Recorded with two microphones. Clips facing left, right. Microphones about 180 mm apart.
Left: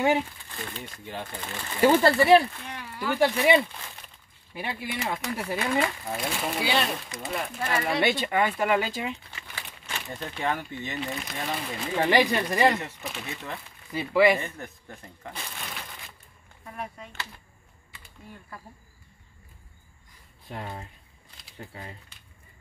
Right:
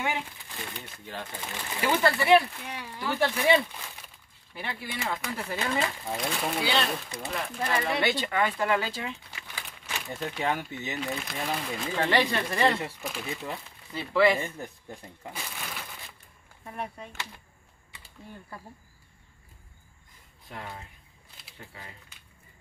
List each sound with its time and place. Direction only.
0.5 s speech: 10° right (ahead or behind)
1.8 s speech: 40° left (ahead or behind)
2.5 s speech: 10° right (ahead or behind)
3.2 s speech: 15° left (ahead or behind)
6.0 s speech: 5° left (ahead or behind)
7.9 s speech: 20° left (ahead or behind)
9.3 s speech: 5° right (ahead or behind)
12.0 s speech: 15° left (ahead or behind)
12.8 s speech: centre (ahead or behind)
13.9 s speech: 10° left (ahead or behind)
14.4 s speech: 10° right (ahead or behind)
16.6 s speech: 30° right (ahead or behind)
20.4 s speech: 30° left (ahead or behind)